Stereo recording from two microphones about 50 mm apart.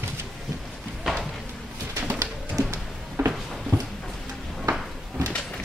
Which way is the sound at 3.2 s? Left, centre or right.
Right.